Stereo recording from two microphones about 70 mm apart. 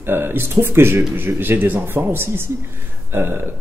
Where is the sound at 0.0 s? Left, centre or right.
Right.